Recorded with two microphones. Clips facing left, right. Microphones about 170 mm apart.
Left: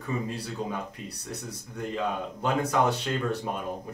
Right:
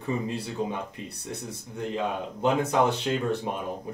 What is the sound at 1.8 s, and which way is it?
Speech, 20° right (ahead or behind).